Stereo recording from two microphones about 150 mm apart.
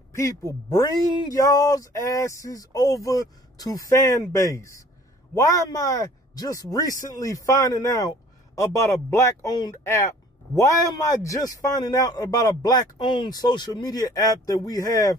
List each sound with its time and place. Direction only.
0.5 s speech: 25° left (ahead or behind)